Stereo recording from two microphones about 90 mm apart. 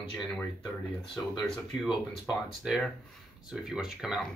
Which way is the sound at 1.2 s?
25° left (ahead or behind).